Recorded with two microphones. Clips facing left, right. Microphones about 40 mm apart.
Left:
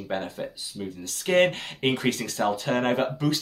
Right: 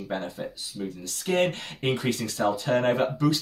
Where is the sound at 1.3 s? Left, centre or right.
Left.